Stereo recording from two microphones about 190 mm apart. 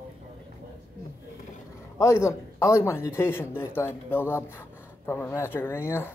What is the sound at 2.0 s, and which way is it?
Speech, 15° left (ahead or behind).